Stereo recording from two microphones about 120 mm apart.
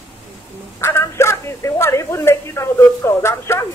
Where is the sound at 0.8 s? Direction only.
20° left (ahead or behind).